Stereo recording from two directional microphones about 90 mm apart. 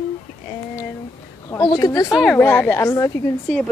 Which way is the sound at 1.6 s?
60° left (ahead or behind).